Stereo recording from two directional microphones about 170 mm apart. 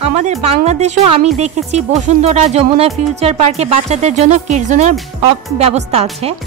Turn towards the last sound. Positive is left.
turn(degrees=-40)  # may be behind; listen again after turning